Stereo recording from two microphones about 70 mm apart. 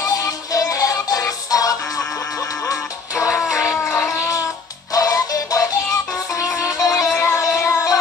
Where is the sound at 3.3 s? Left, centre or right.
Centre.